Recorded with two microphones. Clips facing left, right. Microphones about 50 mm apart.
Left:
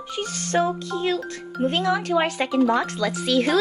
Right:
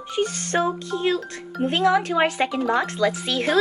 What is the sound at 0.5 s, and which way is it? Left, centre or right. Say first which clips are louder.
Speech: left 1 dB; centre.